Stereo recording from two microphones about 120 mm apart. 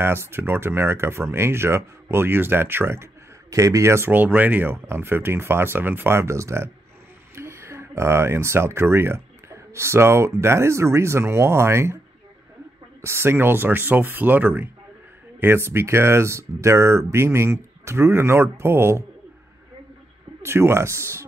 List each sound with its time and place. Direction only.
0.0 s speech: 20° right (ahead or behind)
13.0 s speech: 20° right (ahead or behind)
20.4 s speech: 20° right (ahead or behind)